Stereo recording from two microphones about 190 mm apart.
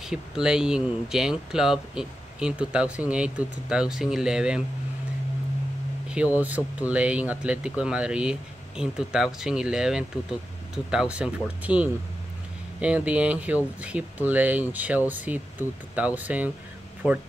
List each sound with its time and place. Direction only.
0.0 s speech: 5° right (ahead or behind)
6.0 s speech: 5° right (ahead or behind)